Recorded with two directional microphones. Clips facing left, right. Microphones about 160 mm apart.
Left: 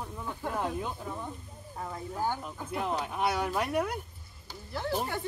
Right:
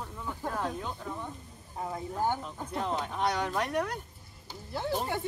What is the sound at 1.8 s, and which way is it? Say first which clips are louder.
Speech: right 2 dB; 20° right (ahead or behind).